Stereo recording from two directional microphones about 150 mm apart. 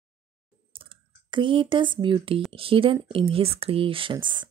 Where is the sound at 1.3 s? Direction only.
35° right (ahead or behind).